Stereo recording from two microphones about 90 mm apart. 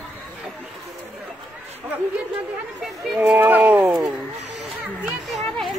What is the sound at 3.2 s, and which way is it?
Speech, 20° right (ahead or behind).